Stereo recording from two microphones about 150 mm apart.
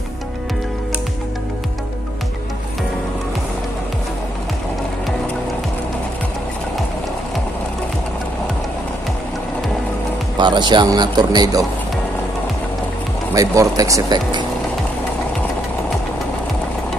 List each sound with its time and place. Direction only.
10.3 s speech: 30° right (ahead or behind)
13.3 s speech: 25° right (ahead or behind)